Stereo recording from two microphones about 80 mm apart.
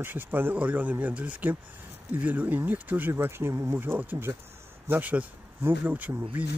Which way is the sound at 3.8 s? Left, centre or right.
Right.